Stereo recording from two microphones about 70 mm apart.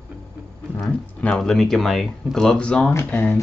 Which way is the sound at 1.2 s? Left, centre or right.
Centre.